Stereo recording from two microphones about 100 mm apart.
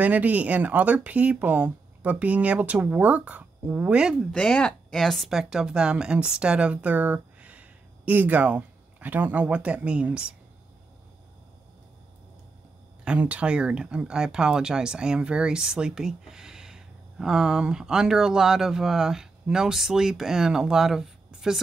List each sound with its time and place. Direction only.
0.0 s speech: 15° right (ahead or behind)
4.2 s speech: 5° left (ahead or behind); by 10.2 s 10° right (ahead or behind)
13.0 s speech: 10° right (ahead or behind)